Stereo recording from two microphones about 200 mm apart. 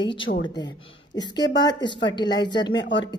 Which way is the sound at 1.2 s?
20° left (ahead or behind).